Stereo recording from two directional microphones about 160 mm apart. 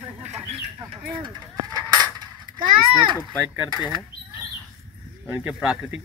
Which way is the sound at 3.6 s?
10° right (ahead or behind).